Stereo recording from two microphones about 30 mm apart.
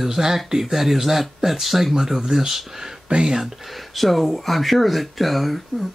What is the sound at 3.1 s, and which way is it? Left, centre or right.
Speech, right.